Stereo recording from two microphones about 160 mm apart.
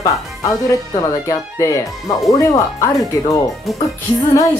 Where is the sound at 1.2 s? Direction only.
20° left (ahead or behind).